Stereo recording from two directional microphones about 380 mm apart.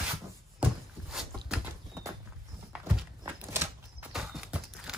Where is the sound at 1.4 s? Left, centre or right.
Centre.